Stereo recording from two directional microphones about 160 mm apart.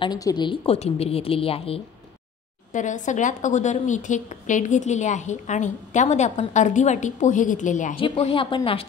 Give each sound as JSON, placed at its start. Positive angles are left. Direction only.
{"t": 0.0, "sound": "a woman's voice", "side_deg": 25}
{"t": 2.7, "sound": "a woman's voice", "side_deg": 50}
{"t": 7.9, "sound": "a woman's voice", "side_deg": 35}